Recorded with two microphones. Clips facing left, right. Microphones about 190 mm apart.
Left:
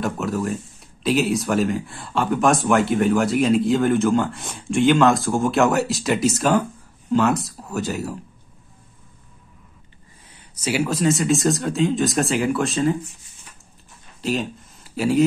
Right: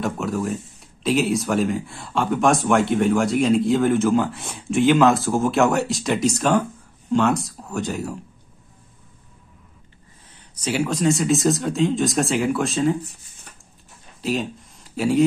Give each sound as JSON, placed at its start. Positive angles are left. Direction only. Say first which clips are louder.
{"t": 0.0, "sound": "speech", "louder": "even", "side_deg": 0}
{"t": 10.5, "sound": "speech", "louder": "left 1 dB", "side_deg": 5}
{"t": 14.2, "sound": "speech", "louder": "even", "side_deg": 0}